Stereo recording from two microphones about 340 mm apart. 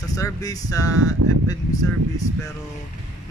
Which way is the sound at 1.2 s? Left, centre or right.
Right.